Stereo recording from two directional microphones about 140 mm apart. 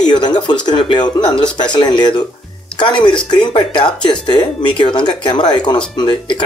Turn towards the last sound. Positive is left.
turn(degrees=30)  # may be behind; listen again after turning